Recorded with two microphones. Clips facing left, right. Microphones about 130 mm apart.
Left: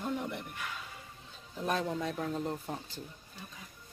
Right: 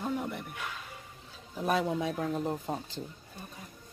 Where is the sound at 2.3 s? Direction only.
20° right (ahead or behind).